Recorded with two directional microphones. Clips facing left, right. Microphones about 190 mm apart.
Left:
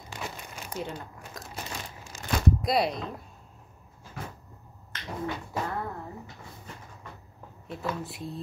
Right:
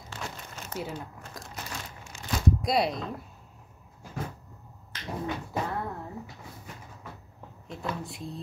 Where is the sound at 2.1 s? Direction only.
40° left (ahead or behind).